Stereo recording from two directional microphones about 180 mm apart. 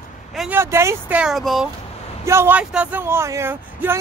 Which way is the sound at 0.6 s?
15° right (ahead or behind).